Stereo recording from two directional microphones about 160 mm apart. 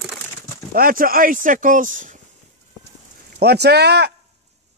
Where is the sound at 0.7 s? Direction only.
65° right (ahead or behind).